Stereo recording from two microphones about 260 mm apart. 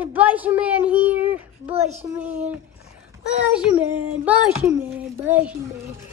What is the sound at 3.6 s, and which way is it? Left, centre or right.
Speech, centre.